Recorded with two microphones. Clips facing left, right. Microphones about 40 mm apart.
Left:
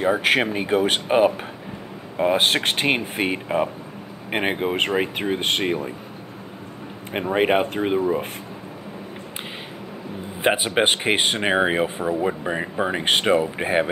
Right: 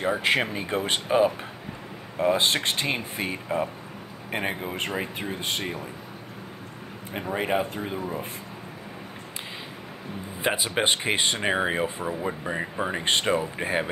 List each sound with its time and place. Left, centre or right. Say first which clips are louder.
0.1 s speech: left 4 dB; left
2.3 s speech: left 4 dB; left
7.1 s speech: left 7 dB; left
10.4 s speech: left 5 dB; left